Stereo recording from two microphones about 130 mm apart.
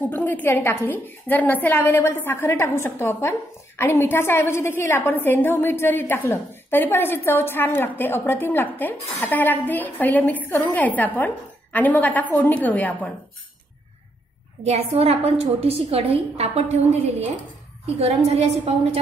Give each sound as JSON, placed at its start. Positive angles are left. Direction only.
{"t": 0.1, "sound": "a woman's voice", "side_deg": 15}
{"t": 14.6, "sound": "a woman's voice", "side_deg": -55}